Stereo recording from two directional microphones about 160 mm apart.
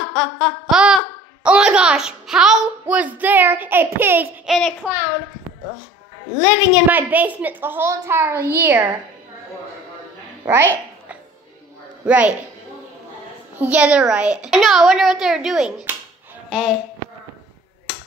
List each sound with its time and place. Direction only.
0.1 s a sound: centre (ahead or behind)
1.4 s a child's voice: 5° right (ahead or behind)
4.5 s a child's voice: centre (ahead or behind)
6.4 s a child's voice: 10° right (ahead or behind)
10.4 s a sound: 15° right (ahead or behind)
12.1 s a child's voice: 10° right (ahead or behind)
13.6 s a child's voice: 10° right (ahead or behind)